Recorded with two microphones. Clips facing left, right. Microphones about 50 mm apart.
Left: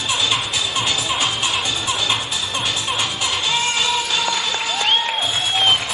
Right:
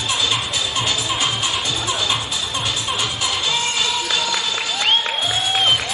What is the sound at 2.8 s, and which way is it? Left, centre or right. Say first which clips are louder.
Music: even; centre.